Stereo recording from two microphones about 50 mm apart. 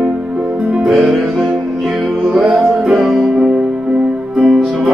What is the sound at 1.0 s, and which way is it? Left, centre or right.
Music, centre.